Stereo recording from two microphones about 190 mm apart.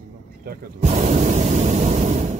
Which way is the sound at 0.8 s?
35° right (ahead or behind).